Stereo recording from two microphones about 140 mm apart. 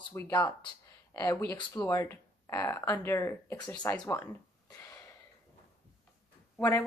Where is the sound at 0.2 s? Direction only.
20° left (ahead or behind).